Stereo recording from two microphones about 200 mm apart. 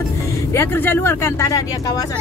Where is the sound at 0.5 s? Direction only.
10° left (ahead or behind).